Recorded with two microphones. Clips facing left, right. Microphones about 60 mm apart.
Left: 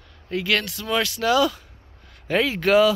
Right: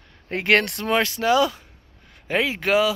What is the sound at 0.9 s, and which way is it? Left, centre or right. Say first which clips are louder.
Speech: even; right.